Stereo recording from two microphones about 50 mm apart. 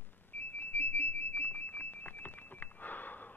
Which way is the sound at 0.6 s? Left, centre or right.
Left.